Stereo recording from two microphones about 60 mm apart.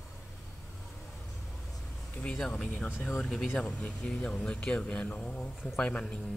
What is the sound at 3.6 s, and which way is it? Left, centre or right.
Speech, centre.